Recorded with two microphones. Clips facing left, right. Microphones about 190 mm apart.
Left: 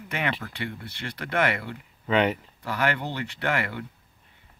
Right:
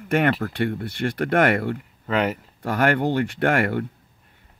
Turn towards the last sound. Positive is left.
turn(degrees=-50)  # may be behind; listen again after turning